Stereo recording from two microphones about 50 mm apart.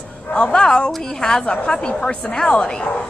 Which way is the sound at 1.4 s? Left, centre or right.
Left.